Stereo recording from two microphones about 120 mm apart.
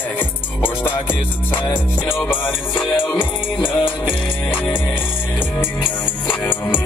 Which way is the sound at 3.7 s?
45° left (ahead or behind).